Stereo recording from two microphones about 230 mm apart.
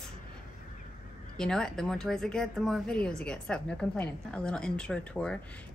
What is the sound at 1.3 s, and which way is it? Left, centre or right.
A woman's voice, centre.